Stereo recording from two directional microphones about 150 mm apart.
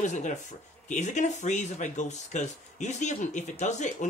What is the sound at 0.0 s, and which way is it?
Speech, 55° left (ahead or behind).